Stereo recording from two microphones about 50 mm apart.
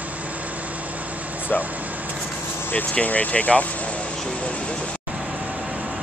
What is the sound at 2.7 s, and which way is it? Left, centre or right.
Speech, left.